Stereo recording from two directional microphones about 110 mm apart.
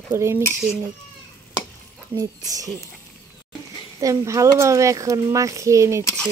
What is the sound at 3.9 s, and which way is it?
Speech, 30° right (ahead or behind).